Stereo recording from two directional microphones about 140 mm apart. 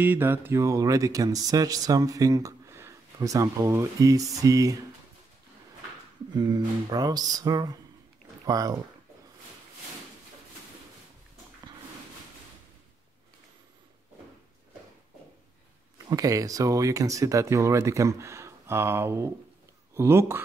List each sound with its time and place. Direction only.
0.0 s speech: 15° right (ahead or behind)
6.3 s speech: 30° right (ahead or behind)
16.1 s speech: 25° right (ahead or behind)